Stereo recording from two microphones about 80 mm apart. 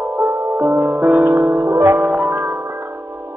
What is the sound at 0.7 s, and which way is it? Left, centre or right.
Music, centre.